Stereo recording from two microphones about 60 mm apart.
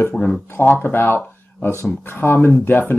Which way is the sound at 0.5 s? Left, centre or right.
Left.